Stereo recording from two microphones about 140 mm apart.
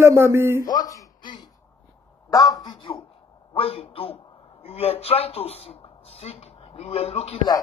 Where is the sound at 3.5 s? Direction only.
40° left (ahead or behind).